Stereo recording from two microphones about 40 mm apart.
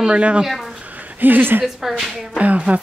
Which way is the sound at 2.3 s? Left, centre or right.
Right.